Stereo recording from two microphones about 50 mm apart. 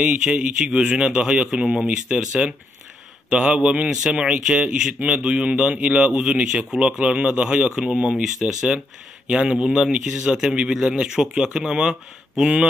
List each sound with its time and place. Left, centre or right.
0.0 s speech: right